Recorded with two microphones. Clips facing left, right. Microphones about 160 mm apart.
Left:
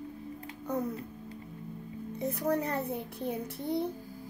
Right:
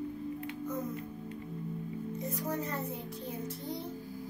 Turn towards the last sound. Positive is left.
turn(degrees=60)  # may be behind; listen again after turning